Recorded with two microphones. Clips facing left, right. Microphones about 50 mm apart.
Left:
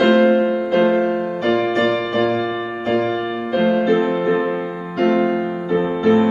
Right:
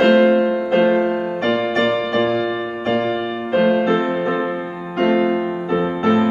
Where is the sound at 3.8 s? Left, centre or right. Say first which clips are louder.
Left 1 dB; right.